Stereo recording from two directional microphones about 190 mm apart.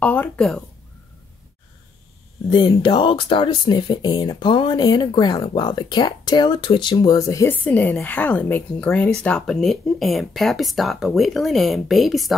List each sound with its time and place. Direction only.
0.0 s speech: 10° left (ahead or behind)
2.5 s speech: 25° left (ahead or behind); by 12.4 s centre (ahead or behind)